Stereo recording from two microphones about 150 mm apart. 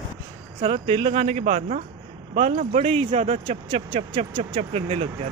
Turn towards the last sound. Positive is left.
turn(degrees=-40)  # may be behind; listen again after turning